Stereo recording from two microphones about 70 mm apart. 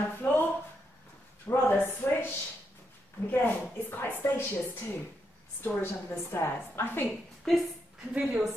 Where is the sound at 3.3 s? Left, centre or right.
Left.